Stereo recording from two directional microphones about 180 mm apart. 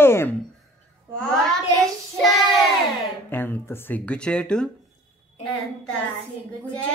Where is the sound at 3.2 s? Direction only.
10° left (ahead or behind).